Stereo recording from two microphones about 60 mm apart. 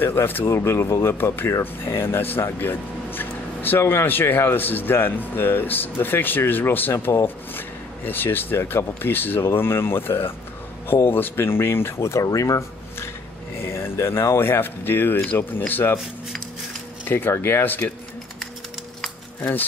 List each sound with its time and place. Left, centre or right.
0.0 s speech: left
0.8 s a man's voice: left
1.1 s speech: left
12.2 s speech: left
13.6 s speech: left
17.1 s speech: left